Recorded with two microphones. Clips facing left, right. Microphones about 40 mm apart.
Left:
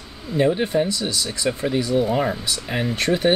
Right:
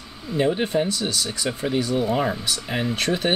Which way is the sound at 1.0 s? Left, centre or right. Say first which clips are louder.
Left 1 dB; centre.